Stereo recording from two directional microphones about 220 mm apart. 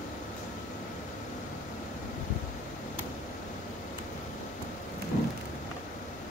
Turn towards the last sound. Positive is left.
turn(degrees=35)  # may be behind; listen again after turning